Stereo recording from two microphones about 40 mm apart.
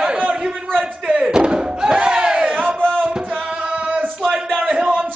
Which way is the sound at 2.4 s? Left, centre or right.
Right.